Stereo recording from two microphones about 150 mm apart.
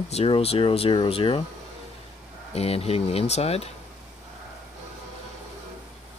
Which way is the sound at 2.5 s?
40° left (ahead or behind).